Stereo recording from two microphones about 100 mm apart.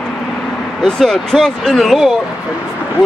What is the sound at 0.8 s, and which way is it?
Speech, 5° left (ahead or behind).